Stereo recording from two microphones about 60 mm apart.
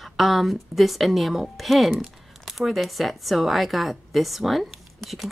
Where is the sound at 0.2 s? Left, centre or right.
Centre.